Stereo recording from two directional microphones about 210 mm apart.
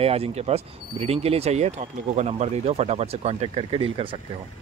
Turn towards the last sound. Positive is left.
turn(degrees=-25)  # may be behind; listen again after turning